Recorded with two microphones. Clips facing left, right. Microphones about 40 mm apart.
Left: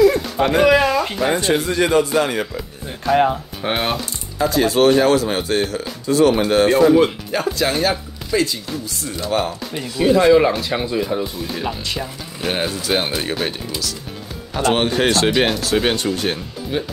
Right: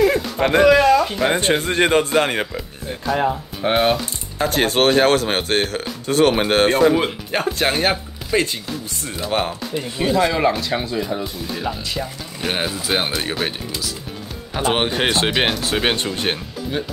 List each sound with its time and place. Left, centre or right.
0.4 s a man's voice: right
0.7 s a sound: centre
1.3 s a man's voice: right
3.6 s speech: centre
4.4 s a man's voice: right
6.8 s speech: centre
7.5 s speech: right
10.0 s speech: centre; by 16.1 s right
16.7 s speech: centre